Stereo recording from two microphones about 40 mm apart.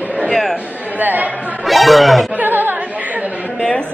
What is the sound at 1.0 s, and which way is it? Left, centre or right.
Speech, right.